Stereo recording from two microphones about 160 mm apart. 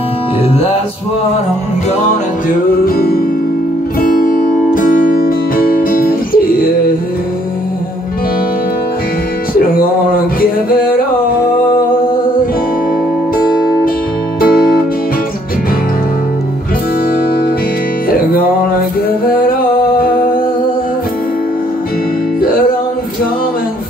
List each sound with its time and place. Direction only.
2.8 s music: 70° left (ahead or behind)
4.0 s music: 60° left (ahead or behind)